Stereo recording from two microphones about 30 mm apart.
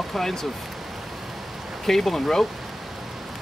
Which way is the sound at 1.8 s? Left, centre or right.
Centre.